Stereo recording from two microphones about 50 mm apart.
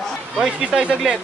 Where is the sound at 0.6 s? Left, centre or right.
Right.